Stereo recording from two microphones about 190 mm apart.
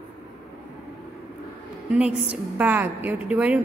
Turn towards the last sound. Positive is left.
turn(degrees=-10)  # may be behind; listen again after turning